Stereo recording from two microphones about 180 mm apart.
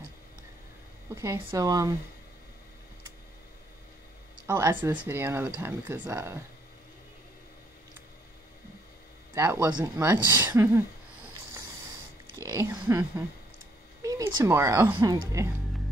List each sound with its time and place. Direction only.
1.1 s speech: 15° right (ahead or behind)
4.5 s speech: 15° right (ahead or behind)
9.3 s speech: 15° right (ahead or behind)
12.4 s speech: 15° right (ahead or behind)